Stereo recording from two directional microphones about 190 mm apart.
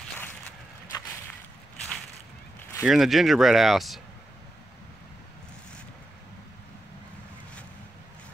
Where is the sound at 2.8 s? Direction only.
Centre (ahead or behind).